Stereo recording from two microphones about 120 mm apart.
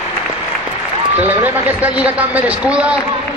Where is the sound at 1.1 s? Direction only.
15° right (ahead or behind).